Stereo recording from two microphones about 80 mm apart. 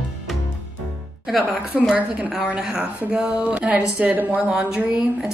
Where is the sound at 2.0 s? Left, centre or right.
Centre.